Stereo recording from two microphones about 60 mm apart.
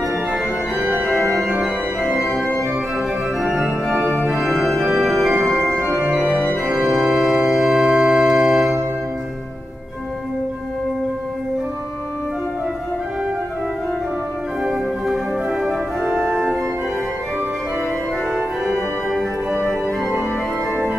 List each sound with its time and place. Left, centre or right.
2.3 s organ: left
3.3 s organ: centre
6.5 s organ: centre
14.6 s organ: centre
18.3 s organ: centre